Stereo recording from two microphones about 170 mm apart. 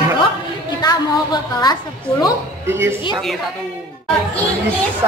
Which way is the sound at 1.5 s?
25° left (ahead or behind).